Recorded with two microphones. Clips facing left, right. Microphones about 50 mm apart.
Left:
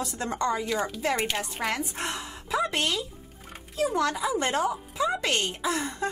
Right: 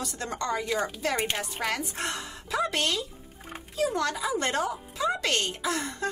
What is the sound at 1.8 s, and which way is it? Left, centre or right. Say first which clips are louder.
A woman's voice: left 1 dB; centre.